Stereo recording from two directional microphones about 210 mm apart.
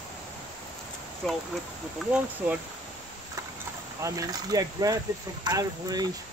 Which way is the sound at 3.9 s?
15° right (ahead or behind).